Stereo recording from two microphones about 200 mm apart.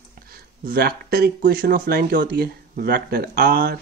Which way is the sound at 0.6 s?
50° right (ahead or behind).